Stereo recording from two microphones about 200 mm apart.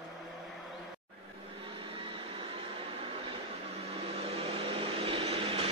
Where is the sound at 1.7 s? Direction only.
25° right (ahead or behind).